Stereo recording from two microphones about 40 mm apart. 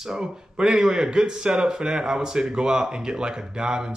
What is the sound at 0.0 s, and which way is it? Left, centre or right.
Speech, centre.